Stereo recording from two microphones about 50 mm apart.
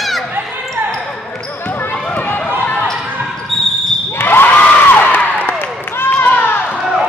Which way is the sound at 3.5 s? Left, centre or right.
Centre.